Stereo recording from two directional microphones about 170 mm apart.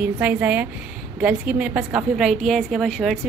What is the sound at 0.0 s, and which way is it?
A woman's voice, 10° right (ahead or behind).